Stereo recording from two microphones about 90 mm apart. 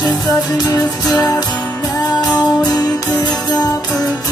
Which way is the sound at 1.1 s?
45° left (ahead or behind).